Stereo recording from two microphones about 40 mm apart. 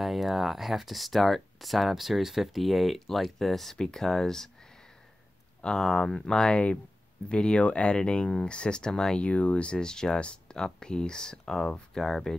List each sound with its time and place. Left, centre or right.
0.0 s speech: centre
5.8 s speech: centre
9.2 s speech: left; by 12.4 s centre